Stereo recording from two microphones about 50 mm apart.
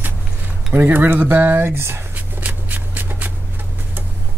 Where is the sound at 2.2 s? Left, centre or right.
Right.